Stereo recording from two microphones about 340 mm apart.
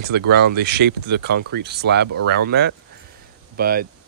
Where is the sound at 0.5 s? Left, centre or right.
Right.